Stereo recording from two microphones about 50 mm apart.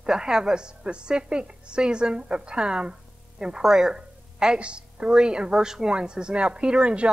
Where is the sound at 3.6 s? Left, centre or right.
Centre; by 7.1 s right.